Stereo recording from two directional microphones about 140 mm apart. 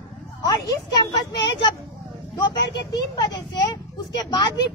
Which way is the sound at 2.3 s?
30° left (ahead or behind).